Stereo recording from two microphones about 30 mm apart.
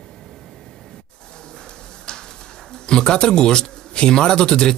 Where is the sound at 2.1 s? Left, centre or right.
Left.